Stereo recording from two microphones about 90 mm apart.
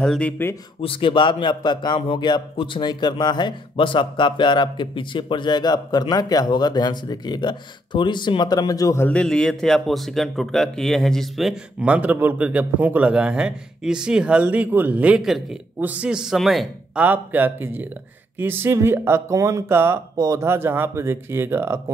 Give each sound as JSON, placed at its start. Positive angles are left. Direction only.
{"t": 0.0, "sound": "speech", "side_deg": 10}
{"t": 0.7, "sound": "speech", "side_deg": 80}
{"t": 2.0, "sound": "speech", "side_deg": 70}
{"t": 2.5, "sound": "speech", "side_deg": 70}
{"t": 9.2, "sound": "speech", "side_deg": 10}
{"t": 11.8, "sound": "a man's voice", "side_deg": -15}
{"t": 15.1, "sound": "speech", "side_deg": 0}
{"t": 15.8, "sound": "a man's voice", "side_deg": -15}
{"t": 16.9, "sound": "speech", "side_deg": -20}
{"t": 20.2, "sound": "speech", "side_deg": -40}
{"t": 20.4, "sound": "speech", "side_deg": -25}